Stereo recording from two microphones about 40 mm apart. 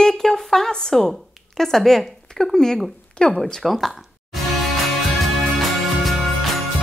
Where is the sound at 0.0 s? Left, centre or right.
Centre.